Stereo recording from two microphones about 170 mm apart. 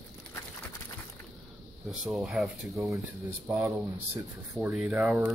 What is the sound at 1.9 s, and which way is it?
Speech, 5° right (ahead or behind).